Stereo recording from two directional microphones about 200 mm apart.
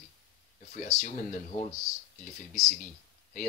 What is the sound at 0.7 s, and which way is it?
Speech, 35° left (ahead or behind).